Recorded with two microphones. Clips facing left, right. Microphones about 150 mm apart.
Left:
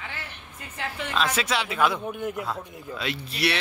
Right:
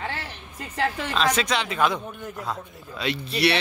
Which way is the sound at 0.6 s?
90° right.